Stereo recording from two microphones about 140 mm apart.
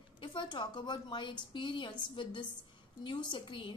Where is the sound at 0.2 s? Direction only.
35° left (ahead or behind).